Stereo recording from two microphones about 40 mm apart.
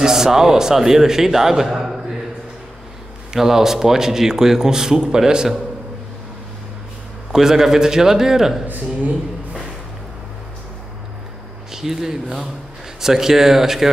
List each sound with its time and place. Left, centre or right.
0.0 s speech: centre
3.3 s speech: centre
7.3 s speech: centre
8.6 s speech: right
11.7 s speech: centre